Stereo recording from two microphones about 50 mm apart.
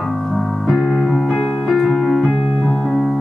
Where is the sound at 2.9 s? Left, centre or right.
Centre.